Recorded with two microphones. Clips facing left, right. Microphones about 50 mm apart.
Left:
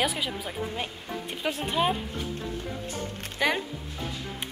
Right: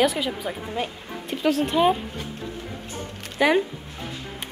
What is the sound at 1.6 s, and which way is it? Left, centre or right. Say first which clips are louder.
Speech: right 5 dB; centre.